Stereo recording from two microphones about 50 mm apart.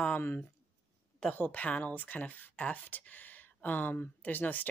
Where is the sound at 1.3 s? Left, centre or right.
Left.